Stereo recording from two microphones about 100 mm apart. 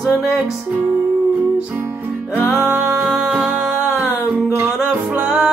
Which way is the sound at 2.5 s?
20° right (ahead or behind).